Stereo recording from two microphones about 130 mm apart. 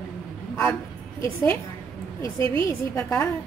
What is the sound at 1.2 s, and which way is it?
Speech, 20° left (ahead or behind).